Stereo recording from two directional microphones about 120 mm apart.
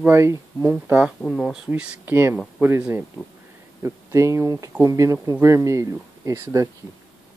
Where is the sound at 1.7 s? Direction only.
10° right (ahead or behind).